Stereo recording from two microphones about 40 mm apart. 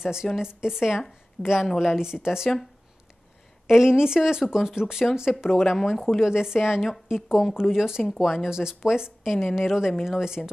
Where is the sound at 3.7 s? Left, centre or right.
Centre.